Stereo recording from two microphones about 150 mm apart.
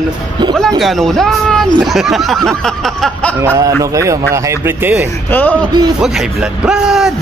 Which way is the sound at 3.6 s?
20° right (ahead or behind).